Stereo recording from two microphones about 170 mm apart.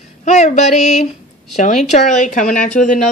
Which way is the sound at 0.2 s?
45° left (ahead or behind).